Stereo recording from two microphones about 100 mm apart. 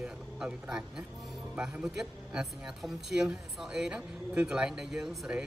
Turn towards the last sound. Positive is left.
turn(degrees=-5)  # may be behind; listen again after turning